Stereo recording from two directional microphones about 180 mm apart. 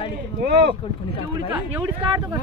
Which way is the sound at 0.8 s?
30° left (ahead or behind).